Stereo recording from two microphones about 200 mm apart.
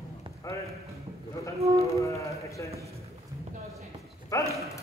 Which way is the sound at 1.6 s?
30° right (ahead or behind).